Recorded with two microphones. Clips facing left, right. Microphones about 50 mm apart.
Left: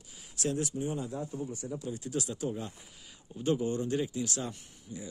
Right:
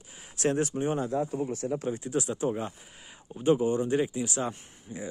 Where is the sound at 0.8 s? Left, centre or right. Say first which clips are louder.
Right 7 dB; right.